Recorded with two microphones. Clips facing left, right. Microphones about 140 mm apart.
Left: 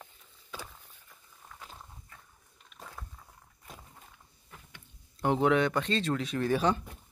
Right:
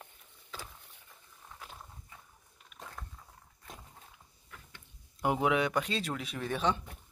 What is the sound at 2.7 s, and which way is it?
Walk, centre (ahead or behind).